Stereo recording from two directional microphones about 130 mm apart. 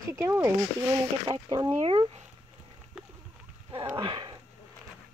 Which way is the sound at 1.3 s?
30° right (ahead or behind).